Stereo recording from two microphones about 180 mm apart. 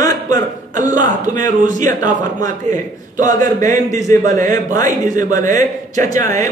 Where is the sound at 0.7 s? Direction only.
45° right (ahead or behind).